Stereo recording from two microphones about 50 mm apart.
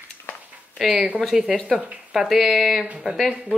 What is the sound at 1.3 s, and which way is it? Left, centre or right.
Speech, centre.